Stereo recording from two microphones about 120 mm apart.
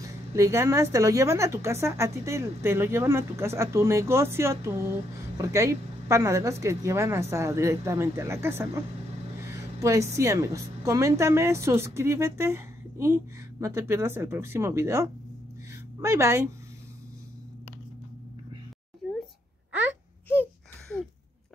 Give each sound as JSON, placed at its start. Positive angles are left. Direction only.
{"t": 0.0, "sound": "a woman's voice", "side_deg": -25}
{"t": 9.8, "sound": "a woman's voice", "side_deg": -25}
{"t": 19.0, "sound": "a sound", "side_deg": 0}